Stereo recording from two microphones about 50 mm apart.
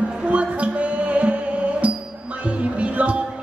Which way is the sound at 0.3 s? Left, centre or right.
Right.